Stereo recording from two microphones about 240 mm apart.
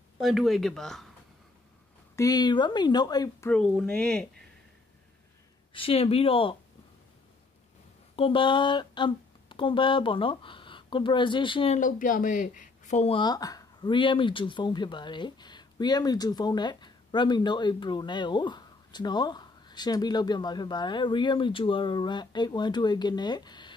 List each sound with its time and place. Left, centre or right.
0.2 s speech: centre
2.1 s speech: centre
5.7 s speech: left
8.2 s speech: left